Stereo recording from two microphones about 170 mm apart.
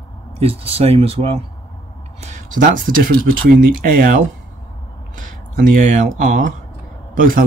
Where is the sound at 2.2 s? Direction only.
50° right (ahead or behind).